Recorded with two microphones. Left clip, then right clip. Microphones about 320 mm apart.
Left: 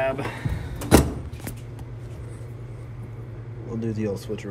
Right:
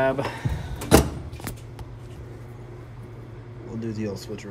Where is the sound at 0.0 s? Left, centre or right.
Centre.